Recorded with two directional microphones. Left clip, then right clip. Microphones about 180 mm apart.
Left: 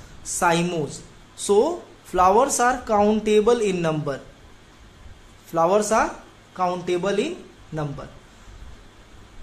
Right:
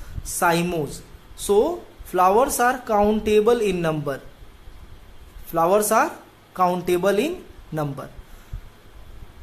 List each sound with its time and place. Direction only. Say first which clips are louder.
0.3 s a woman's voice: even; 10° right (ahead or behind)
5.5 s a woman's voice: right 1 dB; 10° right (ahead or behind)